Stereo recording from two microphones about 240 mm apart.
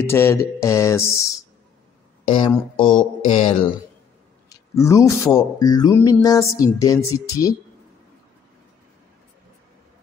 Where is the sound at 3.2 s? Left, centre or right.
Left.